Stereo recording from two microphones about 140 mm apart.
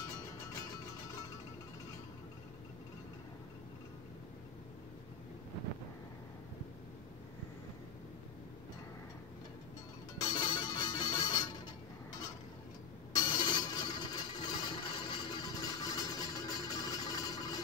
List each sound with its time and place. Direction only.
0.0 s music: 25° left (ahead or behind)
10.3 s music: 35° left (ahead or behind)
13.1 s a sound: 30° left (ahead or behind)